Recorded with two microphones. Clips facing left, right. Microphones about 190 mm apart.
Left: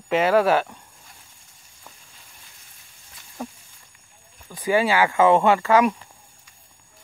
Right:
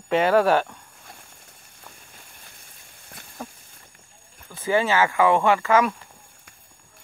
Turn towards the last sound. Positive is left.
turn(degrees=15)  # may be behind; listen again after turning